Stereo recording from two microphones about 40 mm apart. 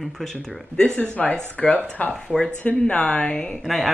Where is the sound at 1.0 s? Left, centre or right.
Left.